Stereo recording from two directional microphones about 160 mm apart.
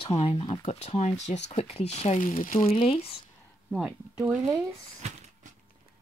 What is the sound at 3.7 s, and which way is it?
Speech, 5° right (ahead or behind).